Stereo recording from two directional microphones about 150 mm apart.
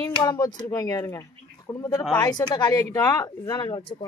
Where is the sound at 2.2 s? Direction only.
25° left (ahead or behind).